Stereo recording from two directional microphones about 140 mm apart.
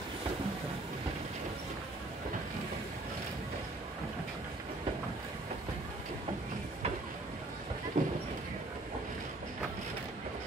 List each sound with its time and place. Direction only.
8.0 s clip-clop: 60° right (ahead or behind)